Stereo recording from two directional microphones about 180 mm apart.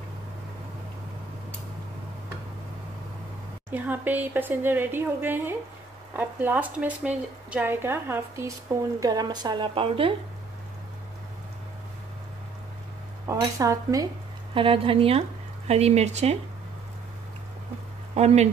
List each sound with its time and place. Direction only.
3.7 s a woman's voice: 10° right (ahead or behind); by 10.1 s 30° right (ahead or behind)
13.3 s a woman's voice: 15° right (ahead or behind)
14.5 s speech: 30° right (ahead or behind)
18.1 s speech: 35° right (ahead or behind)